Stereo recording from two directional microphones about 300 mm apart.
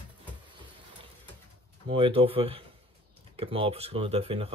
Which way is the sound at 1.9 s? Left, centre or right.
Centre.